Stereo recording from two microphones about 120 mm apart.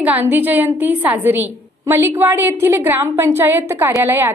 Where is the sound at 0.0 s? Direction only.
15° right (ahead or behind).